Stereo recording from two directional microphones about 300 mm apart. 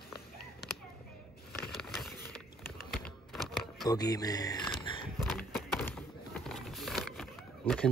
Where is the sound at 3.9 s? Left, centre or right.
Centre.